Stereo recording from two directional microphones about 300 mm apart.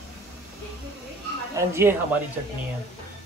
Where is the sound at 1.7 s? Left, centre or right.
Centre.